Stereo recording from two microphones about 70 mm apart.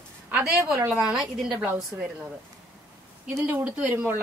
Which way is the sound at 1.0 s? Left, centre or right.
Centre.